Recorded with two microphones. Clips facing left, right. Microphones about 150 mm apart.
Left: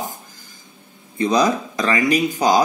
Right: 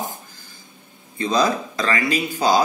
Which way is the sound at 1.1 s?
15° left (ahead or behind).